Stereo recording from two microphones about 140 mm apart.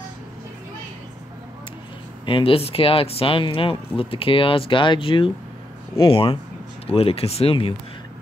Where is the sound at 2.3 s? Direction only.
40° left (ahead or behind).